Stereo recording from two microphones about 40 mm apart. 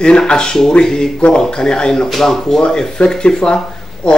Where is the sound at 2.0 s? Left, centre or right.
Centre; by 4.2 s left.